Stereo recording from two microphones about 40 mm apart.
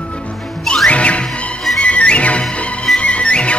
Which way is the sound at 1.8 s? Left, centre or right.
Left.